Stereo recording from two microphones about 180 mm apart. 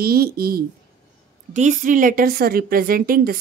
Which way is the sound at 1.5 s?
45° right (ahead or behind).